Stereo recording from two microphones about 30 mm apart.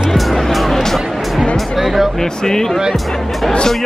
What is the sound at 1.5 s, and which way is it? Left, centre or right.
Speech, centre.